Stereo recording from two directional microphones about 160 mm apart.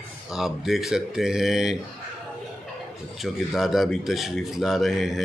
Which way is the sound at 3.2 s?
Centre (ahead or behind).